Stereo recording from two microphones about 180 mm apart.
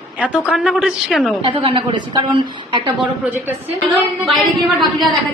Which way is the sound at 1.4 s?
30° right (ahead or behind).